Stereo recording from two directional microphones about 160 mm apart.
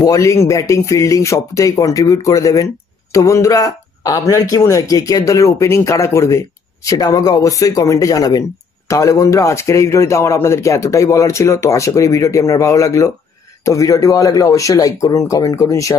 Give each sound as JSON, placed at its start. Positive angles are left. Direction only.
{"t": 0.0, "sound": "speech", "side_deg": 20}